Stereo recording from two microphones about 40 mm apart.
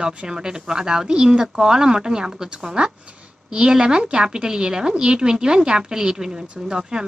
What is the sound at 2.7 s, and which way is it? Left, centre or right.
A woman's voice, right.